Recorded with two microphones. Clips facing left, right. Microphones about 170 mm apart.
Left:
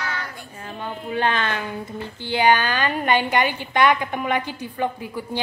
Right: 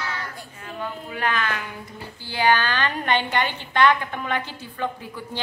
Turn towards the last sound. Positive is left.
turn(degrees=15)  # may be behind; listen again after turning